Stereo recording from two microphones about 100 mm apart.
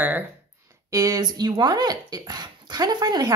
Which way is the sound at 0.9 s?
35° right (ahead or behind).